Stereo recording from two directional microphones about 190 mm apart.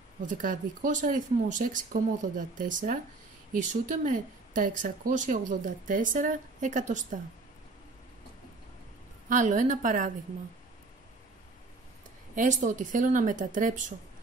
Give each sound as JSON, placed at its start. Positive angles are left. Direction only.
{"t": 0.3, "sound": "speech", "side_deg": -45}
{"t": 9.3, "sound": "speech", "side_deg": -40}
{"t": 12.4, "sound": "speech", "side_deg": -40}